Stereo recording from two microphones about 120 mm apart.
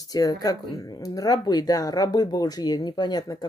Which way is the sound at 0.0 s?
30° left (ahead or behind).